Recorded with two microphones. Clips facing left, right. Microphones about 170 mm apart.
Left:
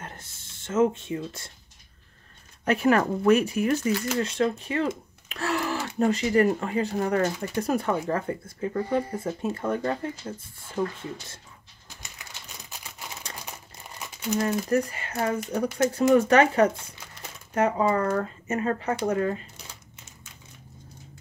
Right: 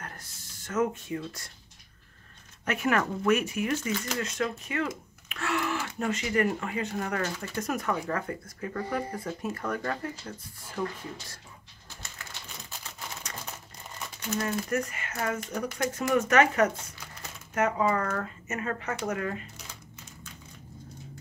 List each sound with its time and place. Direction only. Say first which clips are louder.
0.0 s speech: left 2 dB; 25° left (ahead or behind)
2.6 s speech: left 6 dB; 35° left (ahead or behind)
7.3 s speech: left 5 dB; 15° left (ahead or behind)
7.6 s speech: left 4 dB; 30° left (ahead or behind)
12.0 s a sound: right 1 dB; 15° left (ahead or behind)
13.5 s crumpling: left 1 dB; 15° left (ahead or behind)
14.7 s speech: left 6 dB; 30° left (ahead or behind)